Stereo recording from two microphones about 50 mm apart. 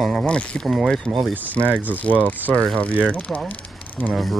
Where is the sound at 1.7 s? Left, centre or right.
Right.